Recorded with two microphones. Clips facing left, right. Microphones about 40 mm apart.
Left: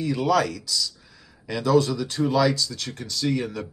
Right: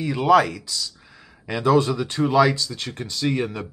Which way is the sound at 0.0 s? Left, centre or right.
Right.